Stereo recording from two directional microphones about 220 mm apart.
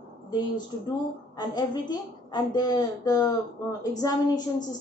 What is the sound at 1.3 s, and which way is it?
A woman's voice, 20° left (ahead or behind).